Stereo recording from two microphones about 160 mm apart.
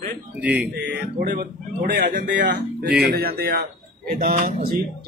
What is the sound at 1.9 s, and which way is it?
Speech, 60° right (ahead or behind).